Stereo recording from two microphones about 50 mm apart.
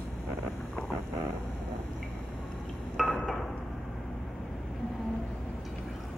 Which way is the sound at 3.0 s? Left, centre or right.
Centre.